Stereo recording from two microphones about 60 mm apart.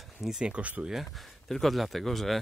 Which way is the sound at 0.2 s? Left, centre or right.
Centre.